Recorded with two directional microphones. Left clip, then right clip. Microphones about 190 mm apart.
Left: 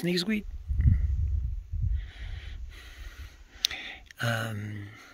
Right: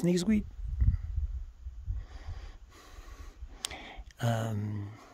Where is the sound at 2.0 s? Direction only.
35° right (ahead or behind).